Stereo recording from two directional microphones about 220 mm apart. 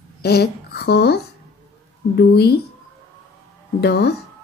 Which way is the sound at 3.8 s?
50° left (ahead or behind).